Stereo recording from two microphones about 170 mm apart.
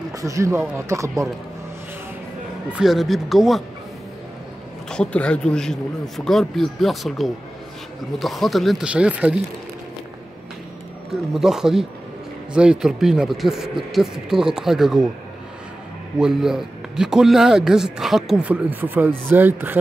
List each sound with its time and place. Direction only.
0.1 s speech: 20° right (ahead or behind)
2.7 s speech: centre (ahead or behind)
4.8 s speech: 5° left (ahead or behind)
11.3 s speech: 5° right (ahead or behind)
16.2 s speech: 5° right (ahead or behind)